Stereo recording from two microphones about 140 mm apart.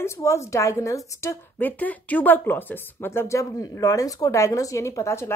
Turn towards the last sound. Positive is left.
turn(degrees=20)  # may be behind; listen again after turning